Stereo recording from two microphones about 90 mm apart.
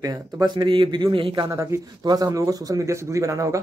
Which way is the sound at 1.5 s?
35° right (ahead or behind).